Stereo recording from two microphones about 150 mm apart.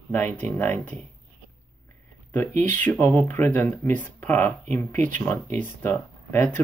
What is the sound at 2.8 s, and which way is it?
Speech, 15° left (ahead or behind).